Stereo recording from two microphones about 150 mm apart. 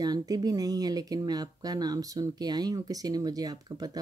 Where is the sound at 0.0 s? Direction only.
25° right (ahead or behind).